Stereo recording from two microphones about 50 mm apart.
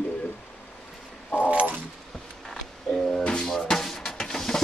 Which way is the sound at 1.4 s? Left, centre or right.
Right.